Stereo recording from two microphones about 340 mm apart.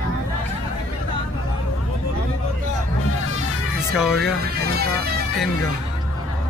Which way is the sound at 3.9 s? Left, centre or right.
Centre.